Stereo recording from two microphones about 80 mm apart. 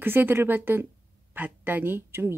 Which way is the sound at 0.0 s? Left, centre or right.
Right.